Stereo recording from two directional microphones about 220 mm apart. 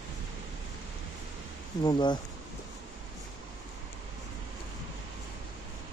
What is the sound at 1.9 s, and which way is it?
Speech, 20° left (ahead or behind).